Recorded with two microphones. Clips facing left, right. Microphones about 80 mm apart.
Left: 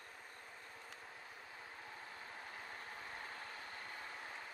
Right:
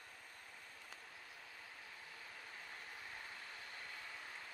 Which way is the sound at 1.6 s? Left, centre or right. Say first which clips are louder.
Left 4 dB; left.